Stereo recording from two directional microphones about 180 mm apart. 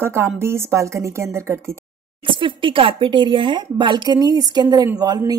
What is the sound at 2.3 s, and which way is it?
Speech, 30° right (ahead or behind).